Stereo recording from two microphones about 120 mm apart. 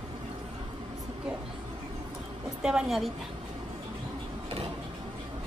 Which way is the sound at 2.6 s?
5° right (ahead or behind).